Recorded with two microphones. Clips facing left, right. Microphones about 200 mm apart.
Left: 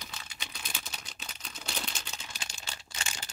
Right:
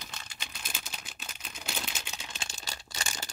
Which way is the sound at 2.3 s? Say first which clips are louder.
Right 2 dB; 30° right (ahead or behind).